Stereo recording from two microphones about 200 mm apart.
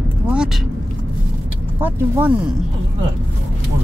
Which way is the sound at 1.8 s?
10° right (ahead or behind).